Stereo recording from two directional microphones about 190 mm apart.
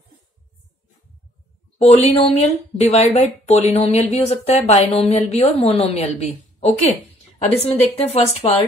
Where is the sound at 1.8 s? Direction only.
35° left (ahead or behind).